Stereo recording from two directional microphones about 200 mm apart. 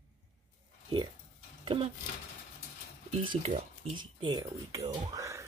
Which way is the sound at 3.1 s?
30° right (ahead or behind).